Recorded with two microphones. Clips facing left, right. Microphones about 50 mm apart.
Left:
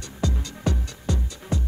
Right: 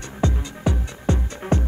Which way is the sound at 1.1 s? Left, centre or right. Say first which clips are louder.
Right 7 dB; right.